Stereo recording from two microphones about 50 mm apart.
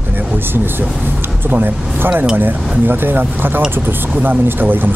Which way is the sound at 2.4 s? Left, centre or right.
Right.